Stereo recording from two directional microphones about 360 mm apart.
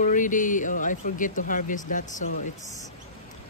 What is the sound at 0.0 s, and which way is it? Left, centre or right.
Speech, left.